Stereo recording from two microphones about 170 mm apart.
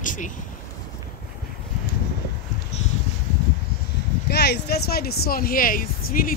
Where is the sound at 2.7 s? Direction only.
40° left (ahead or behind).